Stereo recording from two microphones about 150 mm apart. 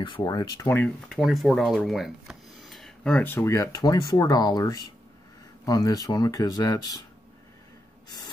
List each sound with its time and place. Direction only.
0.0 s speech: 30° left (ahead or behind)
0.8 s speech: centre (ahead or behind); by 7.0 s 25° left (ahead or behind)